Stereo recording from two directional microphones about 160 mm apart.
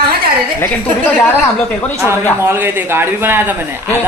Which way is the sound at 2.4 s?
15° right (ahead or behind).